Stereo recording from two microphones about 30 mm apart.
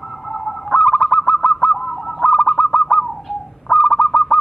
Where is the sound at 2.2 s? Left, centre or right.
Left.